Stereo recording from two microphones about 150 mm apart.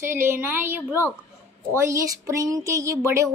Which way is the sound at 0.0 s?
15° right (ahead or behind).